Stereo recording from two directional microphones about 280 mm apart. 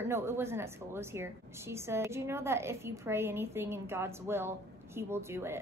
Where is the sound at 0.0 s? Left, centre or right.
Centre.